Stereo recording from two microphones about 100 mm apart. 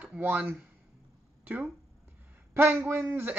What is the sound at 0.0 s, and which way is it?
Speech, 15° right (ahead or behind).